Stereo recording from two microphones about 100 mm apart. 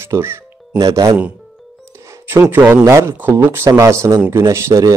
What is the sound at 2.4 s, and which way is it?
A man's voice, 20° right (ahead or behind).